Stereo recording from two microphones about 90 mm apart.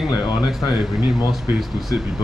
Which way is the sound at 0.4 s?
Centre (ahead or behind).